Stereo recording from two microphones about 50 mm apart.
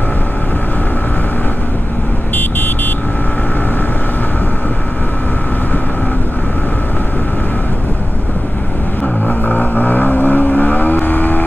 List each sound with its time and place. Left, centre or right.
9.5 s vehicle: left